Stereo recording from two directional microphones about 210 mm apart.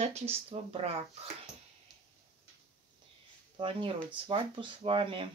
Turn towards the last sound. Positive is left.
turn(degrees=-25)  # may be behind; listen again after turning